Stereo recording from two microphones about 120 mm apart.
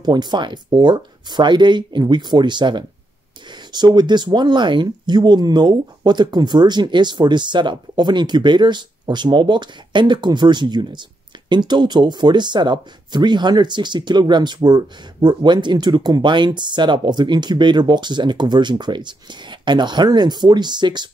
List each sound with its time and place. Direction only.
0.0 s speech: 35° right (ahead or behind)